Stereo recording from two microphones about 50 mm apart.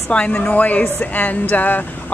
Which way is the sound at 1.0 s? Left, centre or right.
Left.